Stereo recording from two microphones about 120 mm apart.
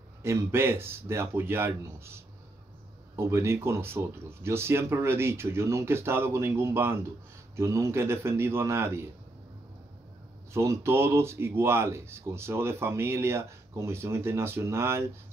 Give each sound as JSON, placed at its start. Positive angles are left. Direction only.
{"t": 0.2, "sound": "speech", "side_deg": -20}
{"t": 10.5, "sound": "speech", "side_deg": -25}